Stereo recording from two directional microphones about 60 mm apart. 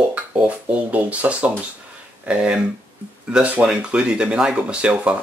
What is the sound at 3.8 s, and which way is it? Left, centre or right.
Speech, centre.